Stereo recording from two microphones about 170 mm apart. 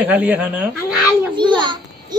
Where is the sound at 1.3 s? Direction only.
25° right (ahead or behind).